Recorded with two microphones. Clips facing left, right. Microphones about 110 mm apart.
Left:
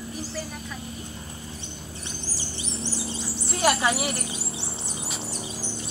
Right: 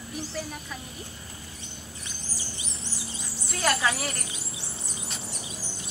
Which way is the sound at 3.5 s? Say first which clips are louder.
Left 3 dB; 20° left (ahead or behind).